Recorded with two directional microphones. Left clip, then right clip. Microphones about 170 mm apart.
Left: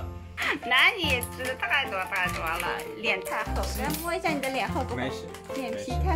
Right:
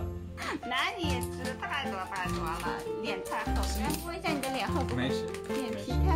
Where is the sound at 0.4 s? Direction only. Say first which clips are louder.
Left 9 dB; 10° left (ahead or behind).